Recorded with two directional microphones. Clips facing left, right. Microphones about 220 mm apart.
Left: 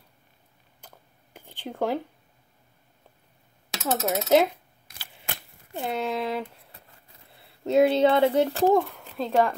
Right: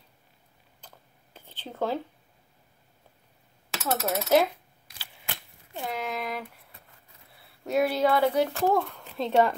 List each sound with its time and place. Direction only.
0.7 s a sound: 10° left (ahead or behind)
3.7 s coin: 15° left (ahead or behind)
4.8 s a sound: 50° left (ahead or behind)
5.8 s coin: 30° left (ahead or behind)
7.3 s speech: 25° left (ahead or behind)
8.9 s speech: centre (ahead or behind)